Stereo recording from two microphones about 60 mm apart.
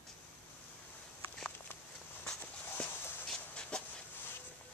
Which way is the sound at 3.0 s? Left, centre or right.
Left.